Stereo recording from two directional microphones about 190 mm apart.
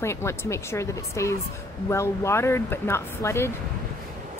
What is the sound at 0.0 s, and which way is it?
Speech, 15° left (ahead or behind).